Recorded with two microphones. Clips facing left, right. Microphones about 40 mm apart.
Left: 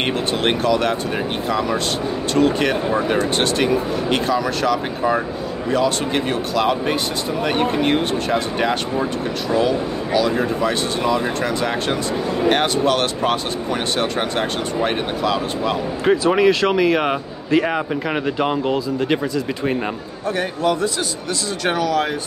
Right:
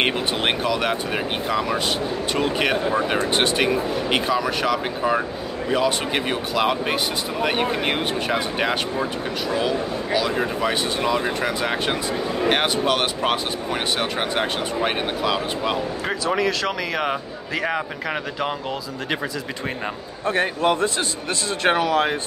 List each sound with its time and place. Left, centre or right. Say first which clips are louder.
0.0 s speech: left 2 dB; centre
16.1 s a man's voice: left 9 dB; centre
20.2 s a man's voice: even; right